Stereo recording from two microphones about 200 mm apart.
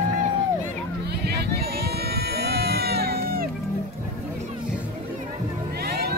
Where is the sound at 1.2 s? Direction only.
55° right (ahead or behind).